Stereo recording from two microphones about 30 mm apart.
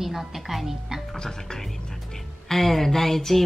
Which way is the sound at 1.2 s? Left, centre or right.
Left.